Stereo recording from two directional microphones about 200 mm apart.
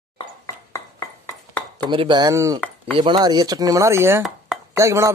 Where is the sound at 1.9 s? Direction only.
25° right (ahead or behind).